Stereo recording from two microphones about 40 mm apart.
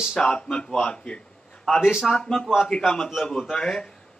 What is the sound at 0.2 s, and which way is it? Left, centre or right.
Speech, centre.